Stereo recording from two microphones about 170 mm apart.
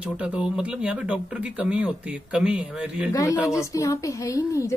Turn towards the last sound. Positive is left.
turn(degrees=20)  # may be behind; listen again after turning